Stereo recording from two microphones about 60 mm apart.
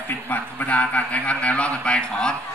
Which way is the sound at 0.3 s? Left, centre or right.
Left.